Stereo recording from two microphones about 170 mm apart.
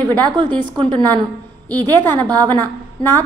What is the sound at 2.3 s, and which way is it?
Speech, 25° right (ahead or behind).